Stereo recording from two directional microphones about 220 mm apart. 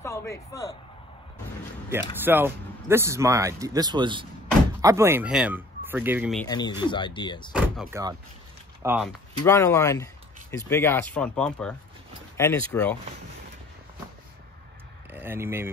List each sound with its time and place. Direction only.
0.0 s a man's voice: 10° left (ahead or behind)
1.9 s speech: 10° right (ahead or behind)
6.4 s speech: 20° left (ahead or behind)
7.5 s door: 5° right (ahead or behind)
8.8 s speech: 10° right (ahead or behind)
9.4 s speech: 15° left (ahead or behind)
15.0 s speech: 10° right (ahead or behind)